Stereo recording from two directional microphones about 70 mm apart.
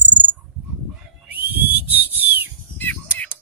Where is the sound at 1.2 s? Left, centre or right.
Right.